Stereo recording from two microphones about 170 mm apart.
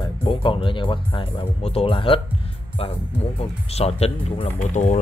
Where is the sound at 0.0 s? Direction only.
25° left (ahead or behind).